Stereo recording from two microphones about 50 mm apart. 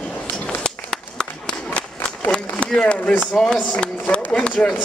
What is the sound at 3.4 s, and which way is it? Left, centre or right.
A man's voice, centre.